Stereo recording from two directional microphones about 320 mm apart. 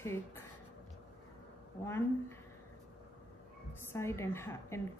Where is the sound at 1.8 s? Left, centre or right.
Centre.